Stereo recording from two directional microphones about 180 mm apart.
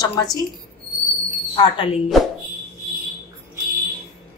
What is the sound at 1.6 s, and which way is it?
Speech, 30° left (ahead or behind).